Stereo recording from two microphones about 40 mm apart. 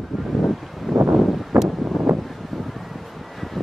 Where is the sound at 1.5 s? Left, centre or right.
Right.